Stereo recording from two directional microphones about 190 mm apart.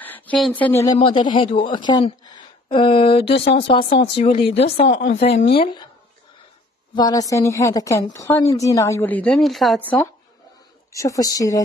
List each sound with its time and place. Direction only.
0.0 s speech: 10° left (ahead or behind)
0.9 s a woman's voice: 25° left (ahead or behind)
7.0 s a woman's voice: 20° left (ahead or behind); by 9.8 s centre (ahead or behind)
10.9 s a woman's voice: 15° left (ahead or behind)